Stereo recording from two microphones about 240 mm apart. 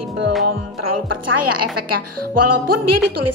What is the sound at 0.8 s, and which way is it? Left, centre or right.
A woman's voice, right.